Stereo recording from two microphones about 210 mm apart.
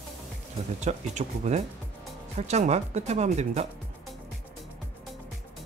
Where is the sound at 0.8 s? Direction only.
35° right (ahead or behind).